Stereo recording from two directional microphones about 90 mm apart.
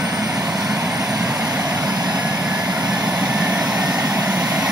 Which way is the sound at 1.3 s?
5° right (ahead or behind).